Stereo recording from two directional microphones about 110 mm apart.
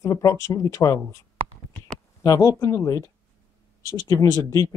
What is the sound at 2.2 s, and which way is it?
Speech, 30° left (ahead or behind).